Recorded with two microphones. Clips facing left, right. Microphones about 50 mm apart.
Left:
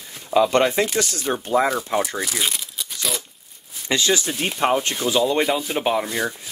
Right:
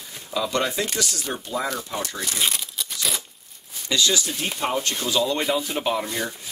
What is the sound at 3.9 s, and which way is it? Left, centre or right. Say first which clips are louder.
Speech: left 2 dB; left.